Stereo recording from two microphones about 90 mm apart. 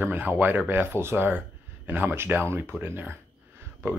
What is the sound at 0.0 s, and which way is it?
Speech, 20° right (ahead or behind).